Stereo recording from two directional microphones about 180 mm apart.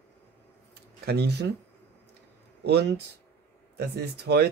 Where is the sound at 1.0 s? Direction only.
65° right (ahead or behind).